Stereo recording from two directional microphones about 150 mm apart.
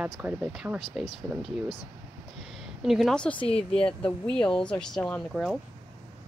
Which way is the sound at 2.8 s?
Centre (ahead or behind).